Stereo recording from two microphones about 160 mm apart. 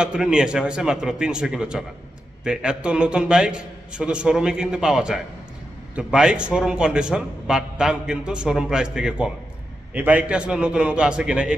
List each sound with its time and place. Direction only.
0.0 s a man's voice: 5° right (ahead or behind)